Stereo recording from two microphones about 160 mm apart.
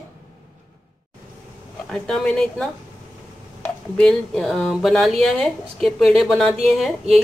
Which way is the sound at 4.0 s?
5° left (ahead or behind).